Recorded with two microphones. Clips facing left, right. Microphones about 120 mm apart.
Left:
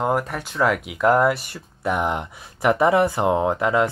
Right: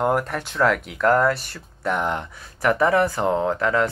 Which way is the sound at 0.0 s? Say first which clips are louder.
Right 1 dB; 5° left (ahead or behind).